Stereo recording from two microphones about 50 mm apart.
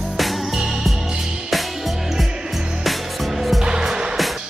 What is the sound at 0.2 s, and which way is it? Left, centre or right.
Music, centre.